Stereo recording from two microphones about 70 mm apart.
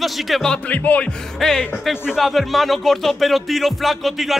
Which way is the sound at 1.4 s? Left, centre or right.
Centre.